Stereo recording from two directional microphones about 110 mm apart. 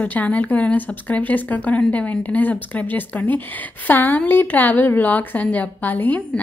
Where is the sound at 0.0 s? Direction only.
15° left (ahead or behind).